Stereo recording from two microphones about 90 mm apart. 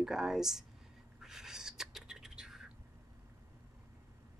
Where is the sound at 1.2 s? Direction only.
5° right (ahead or behind).